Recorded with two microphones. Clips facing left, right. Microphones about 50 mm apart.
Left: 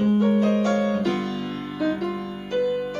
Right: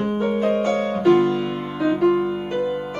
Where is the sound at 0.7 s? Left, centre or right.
Right; by 2.8 s centre.